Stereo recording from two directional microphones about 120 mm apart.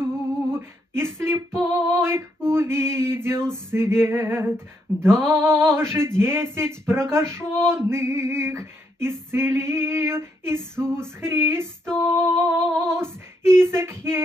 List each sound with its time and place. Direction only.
0.0 s a sound: 20° right (ahead or behind)
2.0 s male singing: 20° right (ahead or behind)
5.1 s female singing: 20° right (ahead or behind)
11.8 s female singing: 5° left (ahead or behind)
12.8 s female singing: 20° right (ahead or behind)